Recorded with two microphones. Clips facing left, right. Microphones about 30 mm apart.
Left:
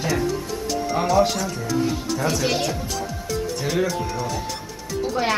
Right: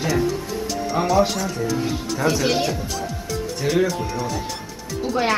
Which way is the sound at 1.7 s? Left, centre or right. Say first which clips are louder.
Left 1 dB; centre.